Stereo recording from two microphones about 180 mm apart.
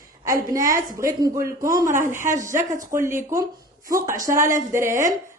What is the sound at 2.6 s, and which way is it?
Speech, 45° right (ahead or behind).